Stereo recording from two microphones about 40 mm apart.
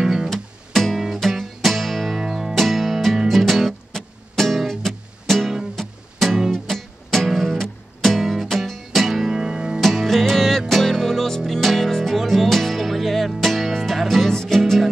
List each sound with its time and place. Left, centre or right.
0.0 s music: centre
0.3 s music: centre
0.9 s music: centre
2.1 s music: centre
2.5 s music: centre
6.3 s music: centre
6.7 s music: centre
9.8 s music: centre
14.3 s music: centre
14.6 s music: centre